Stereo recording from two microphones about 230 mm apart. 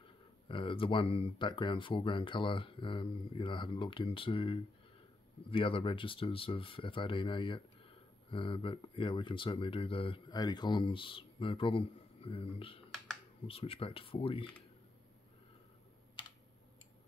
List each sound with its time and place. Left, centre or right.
0.5 s speech: left